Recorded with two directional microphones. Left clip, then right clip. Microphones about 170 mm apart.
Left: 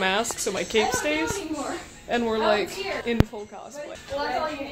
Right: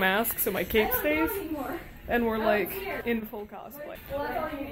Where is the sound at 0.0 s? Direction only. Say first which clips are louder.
Left 2 dB; 5° right (ahead or behind).